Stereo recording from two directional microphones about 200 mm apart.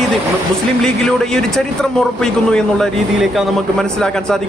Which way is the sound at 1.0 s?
5° left (ahead or behind).